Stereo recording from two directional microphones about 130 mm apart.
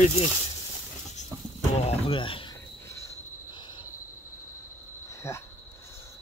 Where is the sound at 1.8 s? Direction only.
45° left (ahead or behind).